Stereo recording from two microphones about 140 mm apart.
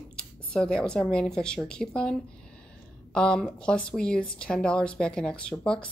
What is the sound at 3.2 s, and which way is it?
A woman's voice, 5° left (ahead or behind).